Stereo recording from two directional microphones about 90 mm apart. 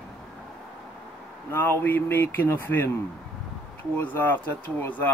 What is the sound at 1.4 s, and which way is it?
Speech, 25° left (ahead or behind).